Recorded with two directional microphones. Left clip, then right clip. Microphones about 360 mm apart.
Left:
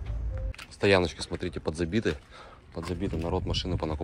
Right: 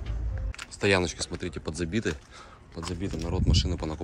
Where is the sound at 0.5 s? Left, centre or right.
Centre.